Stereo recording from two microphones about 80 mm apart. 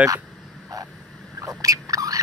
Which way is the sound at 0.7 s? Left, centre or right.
Right.